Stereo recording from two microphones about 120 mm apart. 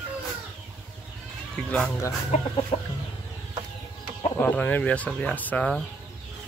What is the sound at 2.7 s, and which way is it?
Chicken, 55° left (ahead or behind).